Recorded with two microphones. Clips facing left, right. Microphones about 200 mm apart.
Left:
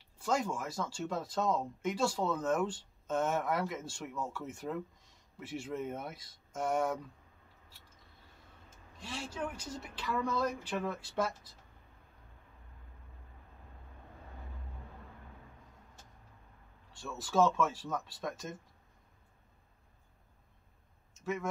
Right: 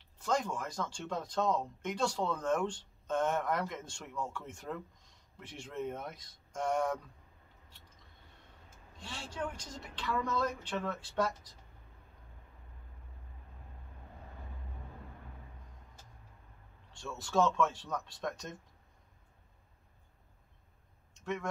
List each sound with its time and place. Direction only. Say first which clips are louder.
0.2 s speech: even; 5° left (ahead or behind)
9.4 s speech: right 2 dB; 10° left (ahead or behind)
17.2 s speech: left 1 dB; 5° left (ahead or behind)
21.1 s a sound: left 1 dB; 5° left (ahead or behind)